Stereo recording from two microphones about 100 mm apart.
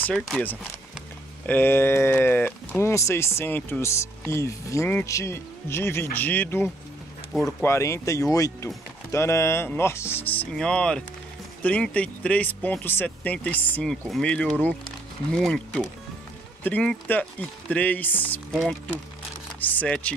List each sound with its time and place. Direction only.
0.0 s speech: 10° left (ahead or behind)
2.8 s speech: 30° left (ahead or behind); by 15.8 s 5° left (ahead or behind)
16.6 s speech: 15° left (ahead or behind)
18.5 s speech: centre (ahead or behind)
19.6 s speech: 15° left (ahead or behind)